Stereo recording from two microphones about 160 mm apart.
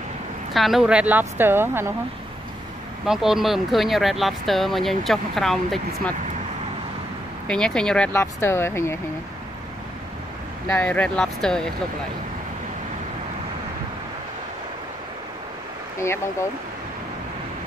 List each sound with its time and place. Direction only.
0.5 s speech: centre (ahead or behind)
3.1 s speech: 5° right (ahead or behind)
7.4 s speech: 5° left (ahead or behind)
8.1 s speech: 15° left (ahead or behind)
10.7 s speech: 10° left (ahead or behind)